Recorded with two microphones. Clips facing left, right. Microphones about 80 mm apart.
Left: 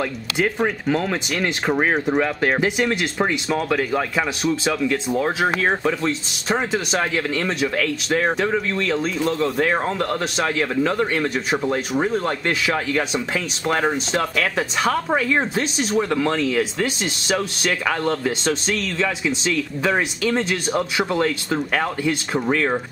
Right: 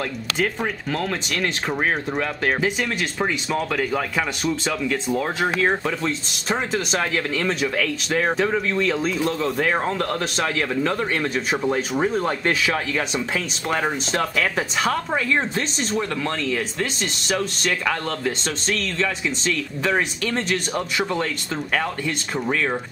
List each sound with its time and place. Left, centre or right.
0.4 s speech: centre